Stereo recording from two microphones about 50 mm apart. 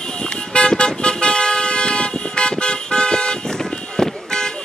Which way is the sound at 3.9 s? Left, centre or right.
Centre.